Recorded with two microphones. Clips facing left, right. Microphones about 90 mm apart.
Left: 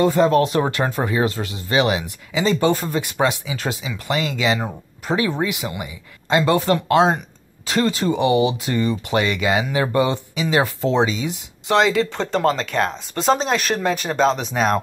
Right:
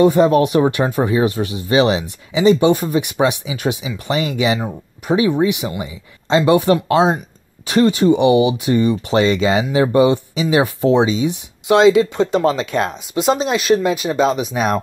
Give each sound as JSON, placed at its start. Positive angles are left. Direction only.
{"t": 0.0, "sound": "speech", "side_deg": -20}
{"t": 13.1, "sound": "speech", "side_deg": -5}